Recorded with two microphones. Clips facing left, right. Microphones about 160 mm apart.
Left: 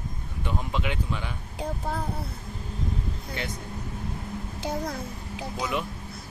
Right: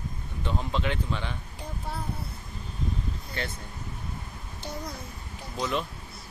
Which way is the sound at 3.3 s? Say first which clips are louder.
Left 1 dB; 15° left (ahead or behind).